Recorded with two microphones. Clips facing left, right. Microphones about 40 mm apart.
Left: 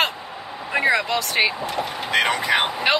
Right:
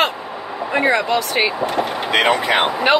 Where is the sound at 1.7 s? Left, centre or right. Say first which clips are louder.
Right 4 dB; right.